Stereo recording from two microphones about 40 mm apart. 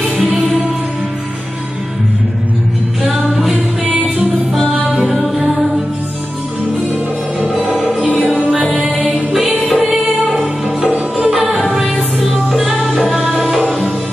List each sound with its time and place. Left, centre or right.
3.3 s music: centre
8.9 s music: right
10.9 s music: right
12.4 s music: centre